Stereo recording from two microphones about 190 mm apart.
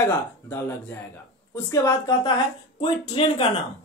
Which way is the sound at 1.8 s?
20° left (ahead or behind).